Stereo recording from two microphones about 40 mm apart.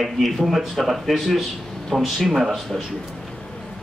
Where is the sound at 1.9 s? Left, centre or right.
Centre.